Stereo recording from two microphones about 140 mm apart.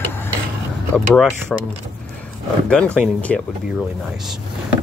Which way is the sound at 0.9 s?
5° left (ahead or behind).